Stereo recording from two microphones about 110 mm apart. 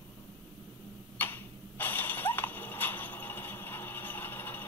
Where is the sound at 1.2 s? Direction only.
15° left (ahead or behind).